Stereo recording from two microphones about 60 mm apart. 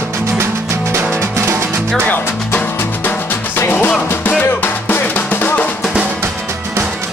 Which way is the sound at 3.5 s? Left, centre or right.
Left.